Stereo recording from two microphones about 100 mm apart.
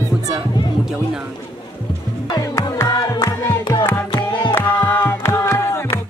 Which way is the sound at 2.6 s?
30° left (ahead or behind).